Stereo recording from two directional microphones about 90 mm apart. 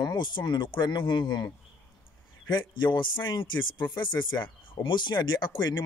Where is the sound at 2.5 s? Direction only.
60° left (ahead or behind).